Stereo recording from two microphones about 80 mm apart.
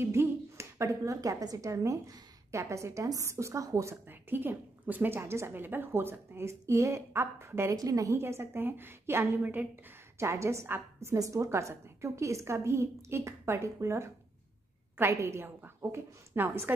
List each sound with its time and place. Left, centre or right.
0.0 s a sound: right
1.4 s a woman's voice: right
4.1 s a woman's voice: right
7.7 s a woman's voice: right
8.2 s a woman's voice: right
9.4 s a woman's voice: right
10.1 s a woman's voice: right